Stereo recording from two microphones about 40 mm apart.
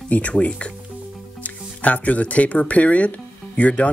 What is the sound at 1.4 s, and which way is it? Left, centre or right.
Speech, left.